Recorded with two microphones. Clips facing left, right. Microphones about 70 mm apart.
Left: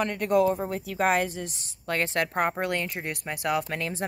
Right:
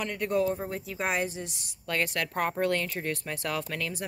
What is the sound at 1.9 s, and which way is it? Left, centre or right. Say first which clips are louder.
Speech: left 3 dB; left.